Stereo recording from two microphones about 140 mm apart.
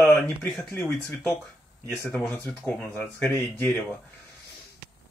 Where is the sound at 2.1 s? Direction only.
10° left (ahead or behind).